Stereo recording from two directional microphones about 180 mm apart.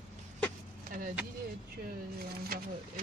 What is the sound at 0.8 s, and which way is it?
Vehicle, 50° right (ahead or behind).